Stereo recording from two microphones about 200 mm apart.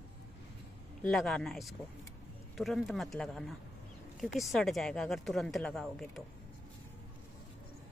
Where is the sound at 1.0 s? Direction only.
5° left (ahead or behind).